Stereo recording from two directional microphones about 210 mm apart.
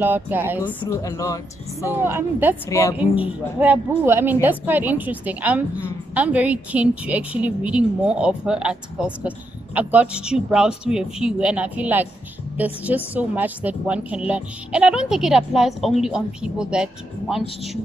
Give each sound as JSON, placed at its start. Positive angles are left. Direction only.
{"t": 0.0, "sound": "a woman's voice", "side_deg": -10}
{"t": 0.7, "sound": "speech", "side_deg": 15}
{"t": 1.9, "sound": "a woman's voice", "side_deg": -10}